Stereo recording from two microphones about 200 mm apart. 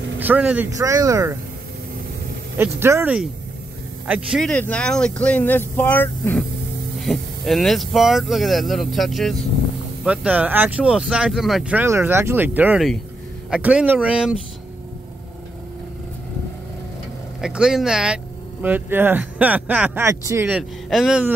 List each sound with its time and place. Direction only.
0.2 s speech: 10° right (ahead or behind)
2.5 s speech: 10° right (ahead or behind)
17.4 s speech: 5° right (ahead or behind)